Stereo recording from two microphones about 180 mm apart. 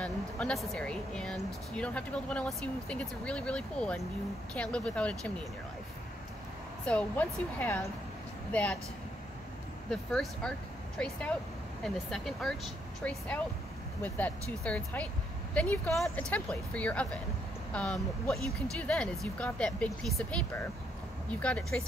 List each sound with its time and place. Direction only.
0.0 s speech: 5° left (ahead or behind)
6.9 s speech: 10° left (ahead or behind)
9.8 s speech: 5° left (ahead or behind)